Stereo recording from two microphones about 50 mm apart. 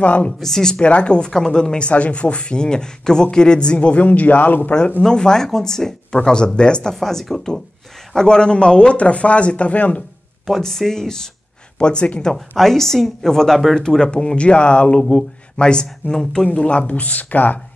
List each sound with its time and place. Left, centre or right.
0.0 s speech: left
0.4 s speech: centre; by 4.7 s left
5.0 s speech: centre; by 10.0 s left
10.6 s speech: centre
12.5 s speech: centre
13.7 s speech: centre
16.5 s speech: left